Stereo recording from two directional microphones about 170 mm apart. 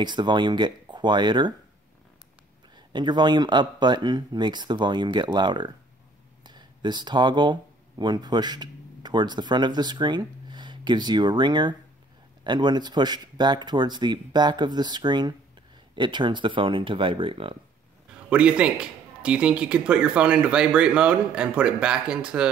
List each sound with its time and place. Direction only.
0.0 s a man's voice: 25° right (ahead or behind)
2.7 s a man's voice: 25° right (ahead or behind)
18.3 s speech: 5° right (ahead or behind)